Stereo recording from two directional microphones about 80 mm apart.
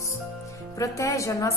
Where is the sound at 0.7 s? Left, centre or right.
Left.